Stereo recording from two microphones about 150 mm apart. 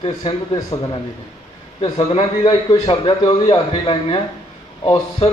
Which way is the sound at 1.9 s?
40° left (ahead or behind).